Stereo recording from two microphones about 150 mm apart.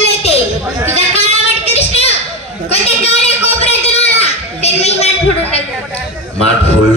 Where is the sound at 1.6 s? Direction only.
45° left (ahead or behind).